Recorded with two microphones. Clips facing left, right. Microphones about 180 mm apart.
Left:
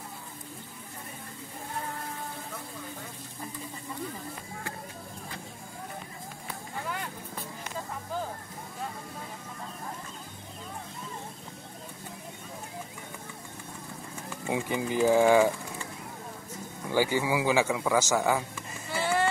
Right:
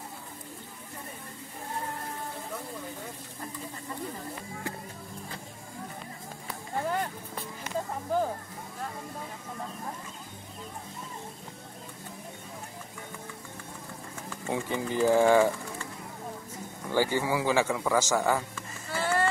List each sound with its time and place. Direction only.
6.8 s vehicle: 40° right (ahead or behind)
8.1 s speech: 55° right (ahead or behind)
14.4 s speech: 15° left (ahead or behind)
16.9 s speech: 15° left (ahead or behind)
18.9 s a sound: 10° left (ahead or behind)